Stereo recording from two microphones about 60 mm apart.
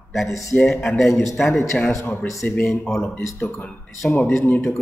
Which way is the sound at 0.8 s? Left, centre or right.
Centre.